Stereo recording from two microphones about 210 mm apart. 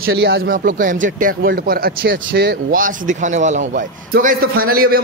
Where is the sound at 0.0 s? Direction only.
60° right (ahead or behind).